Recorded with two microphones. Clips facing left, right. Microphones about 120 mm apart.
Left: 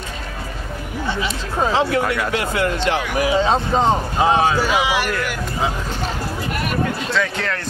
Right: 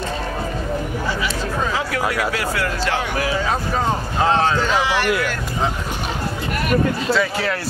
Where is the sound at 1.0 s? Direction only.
25° left (ahead or behind).